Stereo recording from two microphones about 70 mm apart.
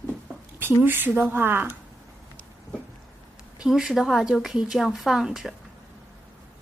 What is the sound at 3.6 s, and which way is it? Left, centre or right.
A woman's voice, centre.